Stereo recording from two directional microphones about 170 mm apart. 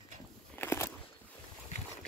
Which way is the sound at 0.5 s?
15° left (ahead or behind).